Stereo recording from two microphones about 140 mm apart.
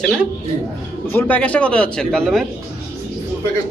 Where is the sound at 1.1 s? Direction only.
10° left (ahead or behind).